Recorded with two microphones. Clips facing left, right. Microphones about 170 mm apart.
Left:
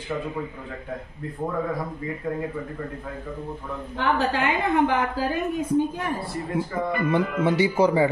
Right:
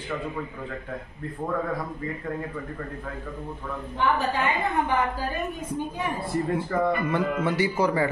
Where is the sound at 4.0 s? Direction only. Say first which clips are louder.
Left 1 dB; 90° left.